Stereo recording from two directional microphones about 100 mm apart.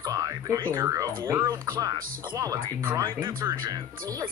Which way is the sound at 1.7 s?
35° right (ahead or behind).